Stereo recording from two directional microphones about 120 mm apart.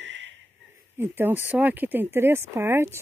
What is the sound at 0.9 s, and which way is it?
Speech, 20° right (ahead or behind).